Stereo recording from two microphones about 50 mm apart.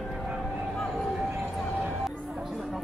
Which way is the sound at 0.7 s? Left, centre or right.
Centre.